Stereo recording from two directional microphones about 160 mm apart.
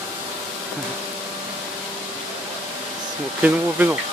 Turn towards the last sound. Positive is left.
turn(degrees=-10)  # may be behind; listen again after turning